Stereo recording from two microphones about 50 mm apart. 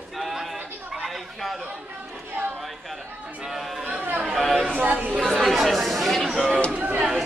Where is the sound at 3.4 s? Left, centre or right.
Centre.